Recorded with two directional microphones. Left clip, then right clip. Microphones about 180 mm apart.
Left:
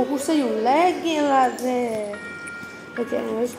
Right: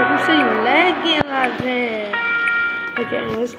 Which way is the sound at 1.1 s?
50° right (ahead or behind).